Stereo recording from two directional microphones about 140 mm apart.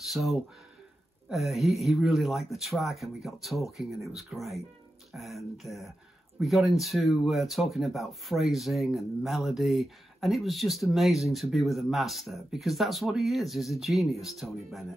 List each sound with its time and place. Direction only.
0.0 s speech: centre (ahead or behind)